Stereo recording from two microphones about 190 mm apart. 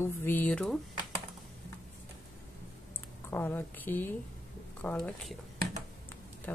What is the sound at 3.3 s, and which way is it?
A woman's voice, 10° left (ahead or behind).